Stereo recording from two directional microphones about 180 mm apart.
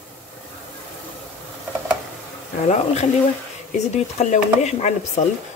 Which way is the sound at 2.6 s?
40° left (ahead or behind).